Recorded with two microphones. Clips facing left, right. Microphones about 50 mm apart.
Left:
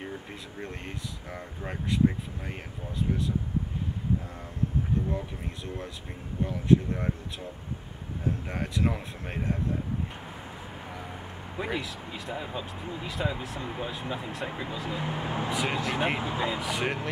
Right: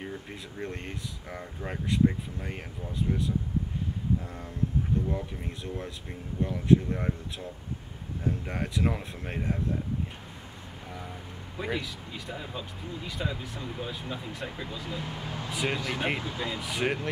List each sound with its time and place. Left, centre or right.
0.0 s speech: centre
4.9 s speech: centre
11.6 s speech: centre
13.7 s speech: centre
15.0 s speech: left
15.5 s speech: centre
16.2 s speech: left
16.5 s speech: centre